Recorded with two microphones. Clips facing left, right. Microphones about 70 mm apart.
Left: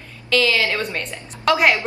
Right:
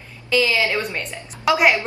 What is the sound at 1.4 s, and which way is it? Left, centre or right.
Speech, centre.